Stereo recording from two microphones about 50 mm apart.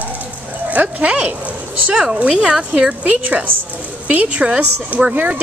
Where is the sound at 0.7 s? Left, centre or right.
Right.